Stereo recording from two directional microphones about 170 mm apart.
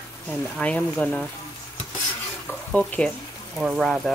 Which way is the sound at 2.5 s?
10° left (ahead or behind).